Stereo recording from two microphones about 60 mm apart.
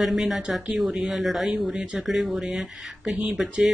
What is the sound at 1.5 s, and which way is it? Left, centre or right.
Speech, centre.